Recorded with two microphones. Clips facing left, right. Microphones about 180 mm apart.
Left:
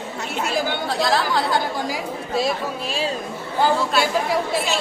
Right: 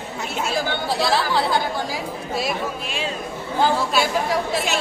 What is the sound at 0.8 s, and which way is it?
Speech, 5° right (ahead or behind).